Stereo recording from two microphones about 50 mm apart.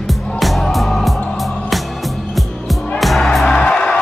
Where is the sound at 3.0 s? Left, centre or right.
Centre.